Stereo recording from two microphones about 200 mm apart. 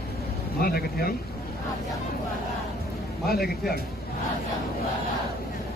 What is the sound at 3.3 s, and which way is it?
Speech, 50° left (ahead or behind).